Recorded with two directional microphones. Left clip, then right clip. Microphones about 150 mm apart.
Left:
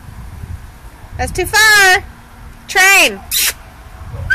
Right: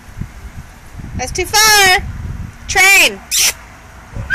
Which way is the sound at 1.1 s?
30° left (ahead or behind).